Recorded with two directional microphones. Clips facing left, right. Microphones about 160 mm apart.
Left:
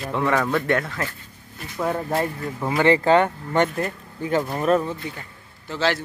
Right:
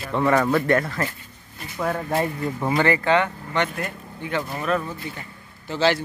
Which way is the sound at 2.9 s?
40° left (ahead or behind).